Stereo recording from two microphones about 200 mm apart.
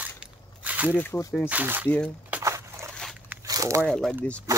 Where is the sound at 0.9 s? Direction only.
10° left (ahead or behind).